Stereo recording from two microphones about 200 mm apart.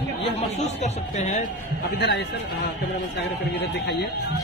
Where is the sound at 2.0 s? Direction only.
55° left (ahead or behind).